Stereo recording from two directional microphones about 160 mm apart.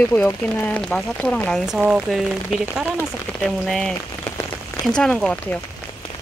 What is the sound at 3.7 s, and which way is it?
Speech, 5° left (ahead or behind).